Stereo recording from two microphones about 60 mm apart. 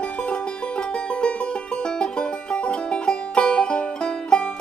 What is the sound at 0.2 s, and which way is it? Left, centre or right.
Music, centre.